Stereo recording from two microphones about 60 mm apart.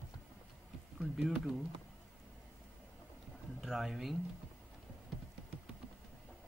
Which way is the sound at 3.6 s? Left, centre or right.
Centre.